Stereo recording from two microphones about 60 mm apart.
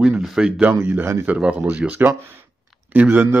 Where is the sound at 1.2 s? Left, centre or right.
Right.